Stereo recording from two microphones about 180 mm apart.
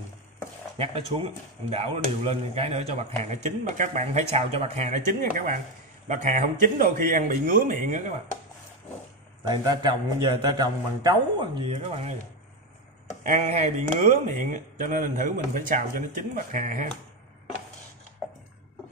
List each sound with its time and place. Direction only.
0.7 s speech: 35° right (ahead or behind); by 8.0 s 50° right (ahead or behind)
9.5 s a man's voice: 25° right (ahead or behind)
13.2 s speech: 40° right (ahead or behind)